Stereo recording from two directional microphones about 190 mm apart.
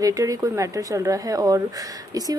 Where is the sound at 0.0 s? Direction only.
20° right (ahead or behind).